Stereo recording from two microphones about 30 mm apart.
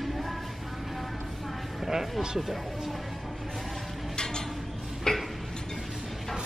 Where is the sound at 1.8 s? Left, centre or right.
Centre.